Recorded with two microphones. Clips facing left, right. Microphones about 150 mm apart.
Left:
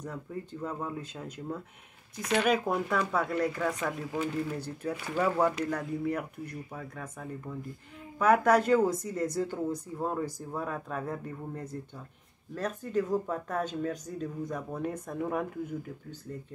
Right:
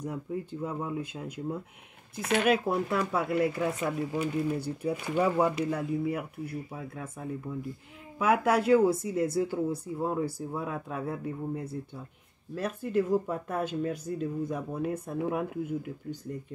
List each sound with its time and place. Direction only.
0.0 s speech: 10° right (ahead or behind)
8.2 s speech: 10° right (ahead or behind)